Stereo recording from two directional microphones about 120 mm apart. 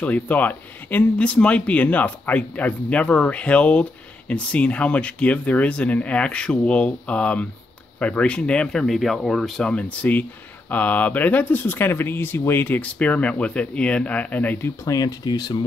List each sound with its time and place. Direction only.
0.0 s speech: 15° left (ahead or behind)
14.9 s speech: 30° left (ahead or behind)